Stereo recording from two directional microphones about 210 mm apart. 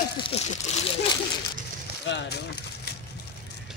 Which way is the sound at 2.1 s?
55° left (ahead or behind).